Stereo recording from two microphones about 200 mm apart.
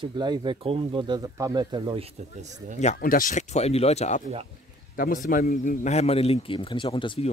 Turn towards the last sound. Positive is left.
turn(degrees=25)  # may be behind; listen again after turning